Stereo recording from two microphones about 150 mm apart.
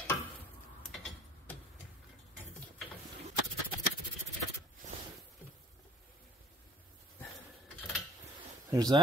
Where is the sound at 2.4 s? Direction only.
10° left (ahead or behind).